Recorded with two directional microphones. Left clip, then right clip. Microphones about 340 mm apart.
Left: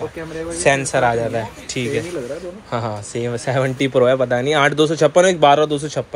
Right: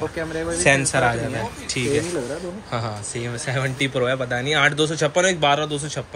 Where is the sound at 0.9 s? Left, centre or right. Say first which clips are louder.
Left 4 dB; centre.